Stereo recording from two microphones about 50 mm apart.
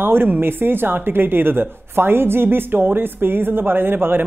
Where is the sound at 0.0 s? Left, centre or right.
Right.